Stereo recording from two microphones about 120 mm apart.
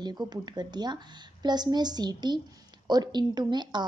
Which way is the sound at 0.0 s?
35° right (ahead or behind).